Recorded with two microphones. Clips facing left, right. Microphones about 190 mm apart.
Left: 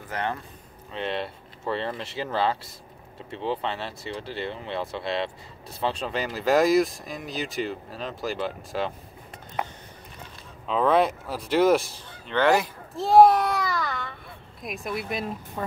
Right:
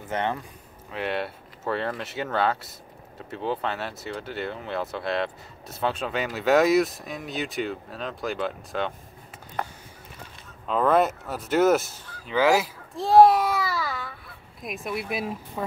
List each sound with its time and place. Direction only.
0.1 s a man's voice: 20° right (ahead or behind)
0.9 s speech: 5° right (ahead or behind)
9.6 s a sound: 10° left (ahead or behind)
10.7 s speech: centre (ahead or behind)